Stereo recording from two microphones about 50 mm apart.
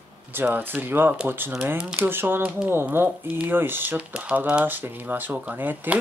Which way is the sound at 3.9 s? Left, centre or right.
Right.